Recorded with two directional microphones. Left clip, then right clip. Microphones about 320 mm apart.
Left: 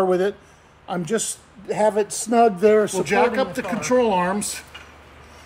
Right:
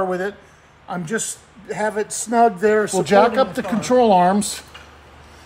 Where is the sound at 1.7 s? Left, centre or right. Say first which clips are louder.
Left 3 dB; left.